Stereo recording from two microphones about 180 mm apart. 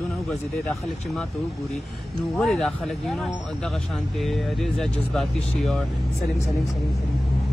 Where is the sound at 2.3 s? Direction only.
Centre (ahead or behind).